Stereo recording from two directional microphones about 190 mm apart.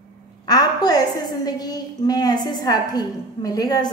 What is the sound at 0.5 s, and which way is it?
A woman's voice, 20° left (ahead or behind).